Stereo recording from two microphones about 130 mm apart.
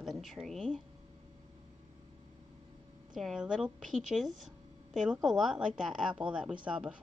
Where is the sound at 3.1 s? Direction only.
5° right (ahead or behind).